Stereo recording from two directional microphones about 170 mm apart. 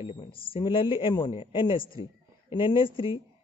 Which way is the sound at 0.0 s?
30° left (ahead or behind).